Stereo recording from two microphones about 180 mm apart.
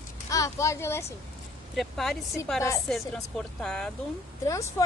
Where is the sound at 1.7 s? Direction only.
Centre (ahead or behind).